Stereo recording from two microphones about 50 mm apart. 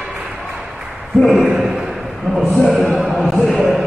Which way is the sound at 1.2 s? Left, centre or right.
Centre.